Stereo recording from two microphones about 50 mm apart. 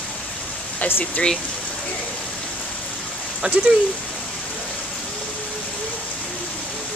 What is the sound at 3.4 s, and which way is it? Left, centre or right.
Speech, centre.